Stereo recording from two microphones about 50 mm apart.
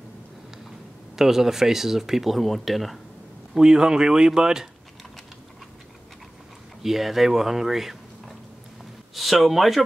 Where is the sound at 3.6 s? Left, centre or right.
Centre.